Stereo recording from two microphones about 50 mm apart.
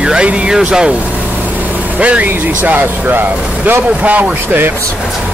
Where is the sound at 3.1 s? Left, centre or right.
Right.